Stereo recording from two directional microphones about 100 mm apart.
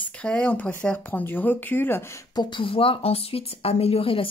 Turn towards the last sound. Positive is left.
turn(degrees=65)  # may be behind; listen again after turning